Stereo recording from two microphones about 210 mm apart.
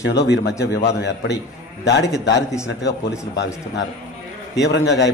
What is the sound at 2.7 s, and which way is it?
Speech, 55° left (ahead or behind).